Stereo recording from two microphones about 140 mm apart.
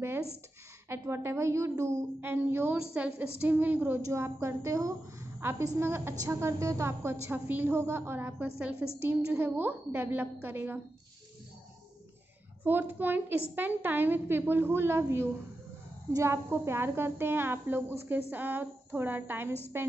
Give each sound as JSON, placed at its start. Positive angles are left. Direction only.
{"t": 0.8, "sound": "a woman's voice", "side_deg": -15}
{"t": 12.6, "sound": "a woman's voice", "side_deg": -15}